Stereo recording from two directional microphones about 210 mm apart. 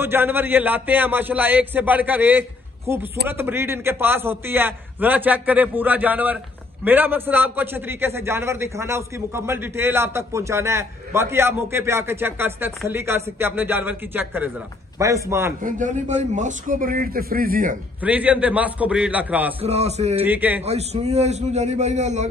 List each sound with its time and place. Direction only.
0.0 s a man's voice: 10° right (ahead or behind)
15.6 s a man's voice: 35° right (ahead or behind)
18.0 s a man's voice: 5° right (ahead or behind)
19.6 s a man's voice: 30° right (ahead or behind)
20.2 s a man's voice: 10° right (ahead or behind)
20.6 s a man's voice: 30° right (ahead or behind)